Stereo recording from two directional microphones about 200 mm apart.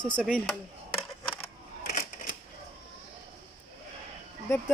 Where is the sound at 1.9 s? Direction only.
40° left (ahead or behind).